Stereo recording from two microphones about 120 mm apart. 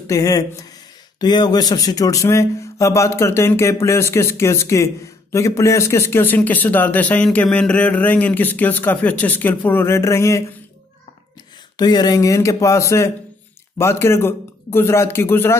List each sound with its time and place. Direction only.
0.0 s a man's voice: 25° left (ahead or behind)
11.7 s speech: 35° left (ahead or behind)